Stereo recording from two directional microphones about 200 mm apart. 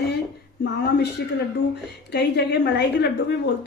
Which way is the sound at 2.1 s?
55° left (ahead or behind).